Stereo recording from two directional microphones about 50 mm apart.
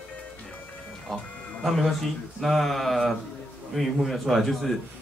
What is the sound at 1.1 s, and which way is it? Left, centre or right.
Speech, centre.